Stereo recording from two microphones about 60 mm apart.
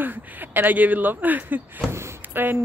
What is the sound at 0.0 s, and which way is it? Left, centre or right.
Speech, right.